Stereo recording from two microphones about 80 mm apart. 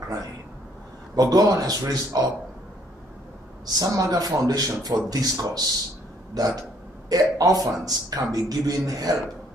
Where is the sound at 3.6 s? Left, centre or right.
Right.